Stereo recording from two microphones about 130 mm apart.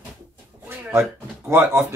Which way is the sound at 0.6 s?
15° right (ahead or behind).